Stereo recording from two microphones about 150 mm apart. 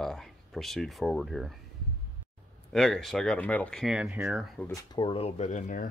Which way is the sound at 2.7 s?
5° left (ahead or behind).